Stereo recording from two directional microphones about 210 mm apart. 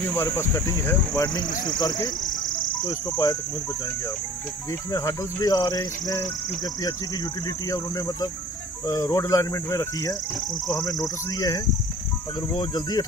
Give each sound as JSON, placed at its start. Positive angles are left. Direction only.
{"t": 0.1, "sound": "speech", "side_deg": 10}
{"t": 4.9, "sound": "speech", "side_deg": 15}
{"t": 7.4, "sound": "speech", "side_deg": 15}